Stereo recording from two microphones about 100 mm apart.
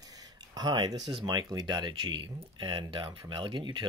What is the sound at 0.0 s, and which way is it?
Speech, 35° right (ahead or behind).